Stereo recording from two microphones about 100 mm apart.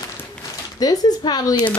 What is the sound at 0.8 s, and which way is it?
Speech, 40° left (ahead or behind).